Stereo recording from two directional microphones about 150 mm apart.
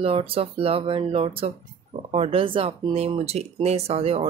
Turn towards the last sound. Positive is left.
turn(degrees=-45)  # may be behind; listen again after turning